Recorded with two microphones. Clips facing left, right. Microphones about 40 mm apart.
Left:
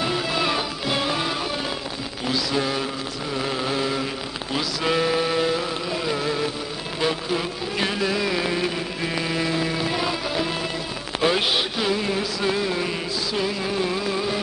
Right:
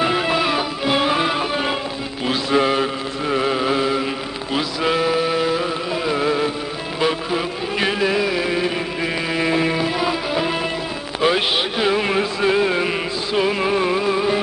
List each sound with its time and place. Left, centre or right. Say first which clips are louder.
0.0 s music: right 6 dB; right
0.4 s music: right 4 dB; centre
2.2 s mantra: right 6 dB; right
4.6 s mantra: right 3 dB; centre
5.6 s music: right 4 dB; centre
9.8 s music: right 4 dB; centre
12.0 s music: right 5 dB; right